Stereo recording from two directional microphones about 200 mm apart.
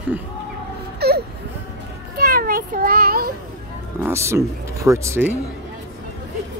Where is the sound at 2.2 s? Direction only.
45° right (ahead or behind).